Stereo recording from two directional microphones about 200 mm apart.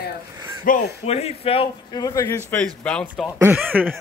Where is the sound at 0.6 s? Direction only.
40° left (ahead or behind); by 2.4 s 15° left (ahead or behind).